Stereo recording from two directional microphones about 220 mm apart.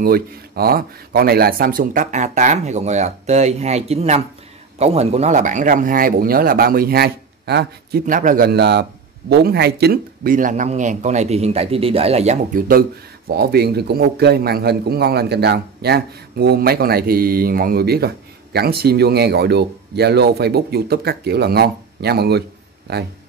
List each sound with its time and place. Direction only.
0.0 s speech: 45° right (ahead or behind)
8.0 s a man's voice: 35° right (ahead or behind)